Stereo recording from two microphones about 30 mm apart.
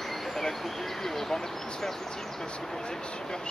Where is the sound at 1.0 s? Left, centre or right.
Centre.